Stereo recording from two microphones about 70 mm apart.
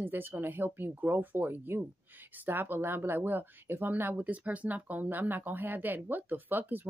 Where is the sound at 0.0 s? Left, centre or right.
Right.